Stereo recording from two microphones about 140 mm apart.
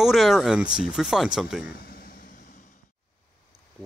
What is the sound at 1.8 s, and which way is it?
Vehicle, 90° left.